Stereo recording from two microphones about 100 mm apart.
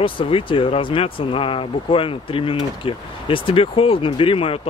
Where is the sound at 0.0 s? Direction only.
60° left (ahead or behind).